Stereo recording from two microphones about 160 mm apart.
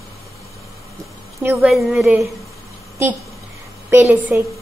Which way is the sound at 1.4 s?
15° right (ahead or behind).